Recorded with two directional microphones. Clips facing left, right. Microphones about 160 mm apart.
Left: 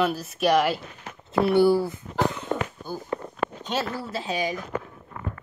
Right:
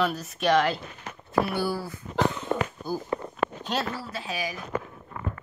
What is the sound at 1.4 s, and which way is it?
Speech, 25° left (ahead or behind).